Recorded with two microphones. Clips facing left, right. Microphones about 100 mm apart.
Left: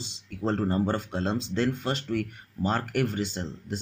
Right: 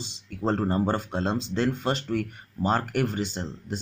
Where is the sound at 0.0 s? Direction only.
20° right (ahead or behind).